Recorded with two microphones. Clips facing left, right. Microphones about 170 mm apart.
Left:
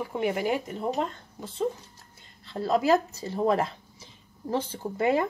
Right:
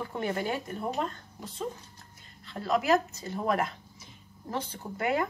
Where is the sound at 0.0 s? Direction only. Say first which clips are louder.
Left 4 dB; 10° left (ahead or behind).